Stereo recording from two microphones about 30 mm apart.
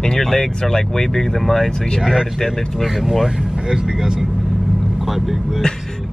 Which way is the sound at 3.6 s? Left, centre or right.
Right.